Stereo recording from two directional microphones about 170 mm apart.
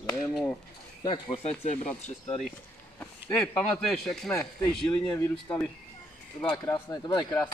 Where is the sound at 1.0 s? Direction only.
30° left (ahead or behind).